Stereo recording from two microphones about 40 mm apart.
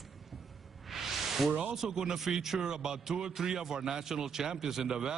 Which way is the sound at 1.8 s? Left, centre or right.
Centre.